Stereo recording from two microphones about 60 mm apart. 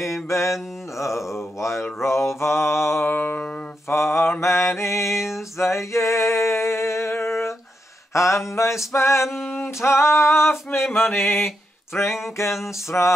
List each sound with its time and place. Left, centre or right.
0.3 s speech: left
2.0 s mantra: left
3.1 s music: left
3.9 s mantra: left
5.6 s a sound: left
12.9 s a sound: left